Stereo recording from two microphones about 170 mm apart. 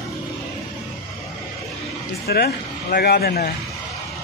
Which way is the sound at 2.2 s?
65° left (ahead or behind).